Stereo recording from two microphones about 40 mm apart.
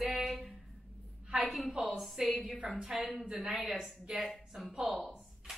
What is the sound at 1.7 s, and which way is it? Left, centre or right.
Speech, right.